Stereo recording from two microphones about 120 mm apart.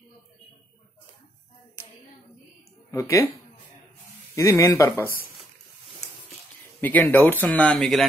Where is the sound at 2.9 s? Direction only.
25° left (ahead or behind).